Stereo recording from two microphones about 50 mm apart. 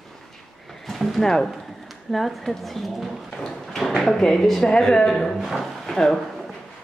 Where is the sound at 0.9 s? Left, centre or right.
Centre.